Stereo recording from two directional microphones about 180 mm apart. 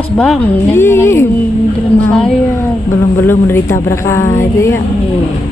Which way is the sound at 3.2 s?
10° left (ahead or behind).